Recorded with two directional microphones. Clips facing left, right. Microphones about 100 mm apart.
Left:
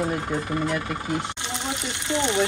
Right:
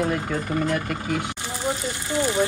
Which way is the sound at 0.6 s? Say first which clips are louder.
Right 2 dB; 50° right (ahead or behind).